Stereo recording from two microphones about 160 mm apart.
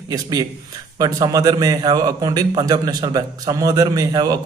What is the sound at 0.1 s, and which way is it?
A man's voice, 25° right (ahead or behind).